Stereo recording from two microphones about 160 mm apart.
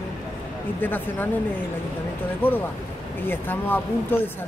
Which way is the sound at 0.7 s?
10° left (ahead or behind).